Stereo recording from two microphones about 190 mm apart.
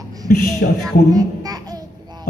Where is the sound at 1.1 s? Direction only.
20° right (ahead or behind).